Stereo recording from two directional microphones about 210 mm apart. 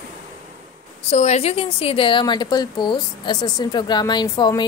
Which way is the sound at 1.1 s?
35° left (ahead or behind).